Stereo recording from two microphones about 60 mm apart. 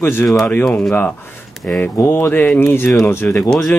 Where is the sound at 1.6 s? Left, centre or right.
Left.